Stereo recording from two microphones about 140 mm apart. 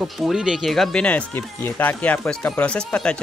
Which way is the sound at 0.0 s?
5° right (ahead or behind).